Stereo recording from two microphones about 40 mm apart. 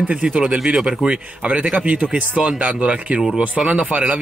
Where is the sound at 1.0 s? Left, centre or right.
Right.